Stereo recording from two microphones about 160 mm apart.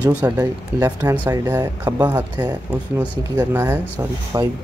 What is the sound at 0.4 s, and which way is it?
Speech, 20° right (ahead or behind).